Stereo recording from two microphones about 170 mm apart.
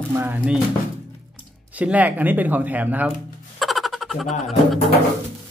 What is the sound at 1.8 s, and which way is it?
Speech, 10° right (ahead or behind).